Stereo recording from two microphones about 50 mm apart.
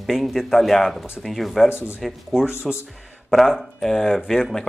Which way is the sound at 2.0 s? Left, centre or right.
Centre.